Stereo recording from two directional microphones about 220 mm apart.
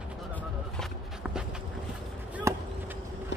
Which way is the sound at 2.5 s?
15° right (ahead or behind).